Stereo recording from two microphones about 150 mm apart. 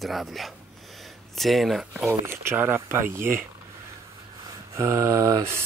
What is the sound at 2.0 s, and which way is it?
Speech, 15° right (ahead or behind).